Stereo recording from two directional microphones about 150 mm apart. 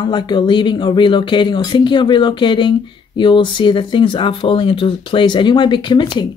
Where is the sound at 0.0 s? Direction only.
30° left (ahead or behind).